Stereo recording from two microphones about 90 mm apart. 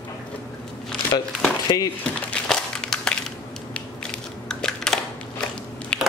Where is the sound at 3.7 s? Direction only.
10° left (ahead or behind).